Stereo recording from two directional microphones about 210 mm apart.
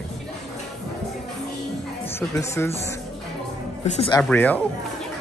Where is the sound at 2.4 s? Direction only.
10° left (ahead or behind).